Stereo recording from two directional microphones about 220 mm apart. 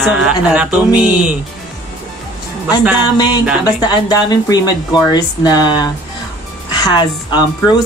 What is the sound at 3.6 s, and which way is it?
A woman's voice, 20° left (ahead or behind).